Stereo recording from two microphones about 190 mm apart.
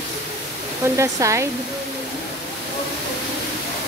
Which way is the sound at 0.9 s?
15° right (ahead or behind).